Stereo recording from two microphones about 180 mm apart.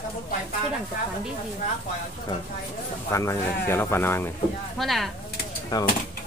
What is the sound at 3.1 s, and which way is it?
Speech, 15° left (ahead or behind).